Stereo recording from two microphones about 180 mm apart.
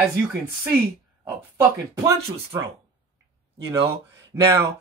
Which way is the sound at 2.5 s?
15° right (ahead or behind).